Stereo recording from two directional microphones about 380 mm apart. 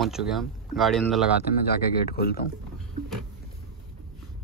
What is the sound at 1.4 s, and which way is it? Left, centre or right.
Speech, left.